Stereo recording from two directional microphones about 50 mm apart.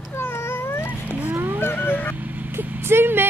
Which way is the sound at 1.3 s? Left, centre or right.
Right.